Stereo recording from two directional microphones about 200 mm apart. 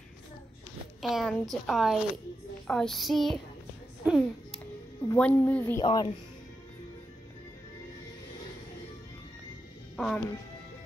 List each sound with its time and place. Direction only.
1.0 s a woman's voice: centre (ahead or behind)
4.0 s a sound: 5° right (ahead or behind)
5.0 s a woman's voice: 10° left (ahead or behind)
5.9 s speech: 25° left (ahead or behind)
9.9 s speech: centre (ahead or behind)